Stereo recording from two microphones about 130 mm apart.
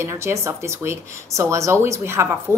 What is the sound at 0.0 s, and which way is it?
Speech, 20° right (ahead or behind).